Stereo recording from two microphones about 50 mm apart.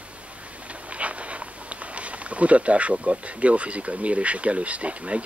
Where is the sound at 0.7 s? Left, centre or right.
Right.